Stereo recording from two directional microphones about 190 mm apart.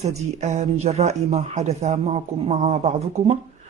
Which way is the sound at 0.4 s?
35° right (ahead or behind).